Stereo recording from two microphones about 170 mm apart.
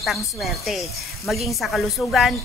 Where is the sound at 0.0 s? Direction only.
Centre (ahead or behind).